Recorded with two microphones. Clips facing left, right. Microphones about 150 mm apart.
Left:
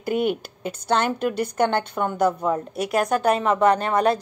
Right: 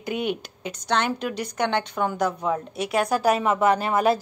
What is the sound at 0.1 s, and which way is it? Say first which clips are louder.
Speech: left 4 dB; 50° left (ahead or behind).